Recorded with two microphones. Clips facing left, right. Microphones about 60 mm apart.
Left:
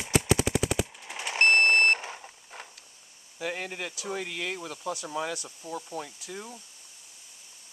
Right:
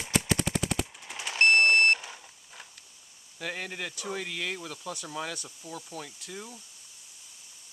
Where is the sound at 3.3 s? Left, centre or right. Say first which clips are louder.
Left 2 dB; centre.